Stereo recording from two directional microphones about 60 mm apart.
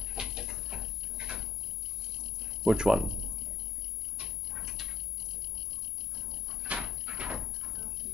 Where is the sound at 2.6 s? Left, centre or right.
Centre.